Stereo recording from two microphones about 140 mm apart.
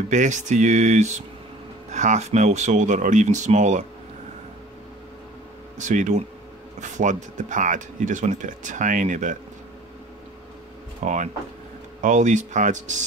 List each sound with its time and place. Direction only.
0.1 s speech: 60° right (ahead or behind)
5.8 s speech: 60° right (ahead or behind)
11.0 s speech: 60° right (ahead or behind)